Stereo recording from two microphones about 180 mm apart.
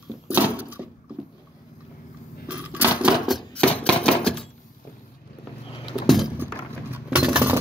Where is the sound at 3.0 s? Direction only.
Centre (ahead or behind).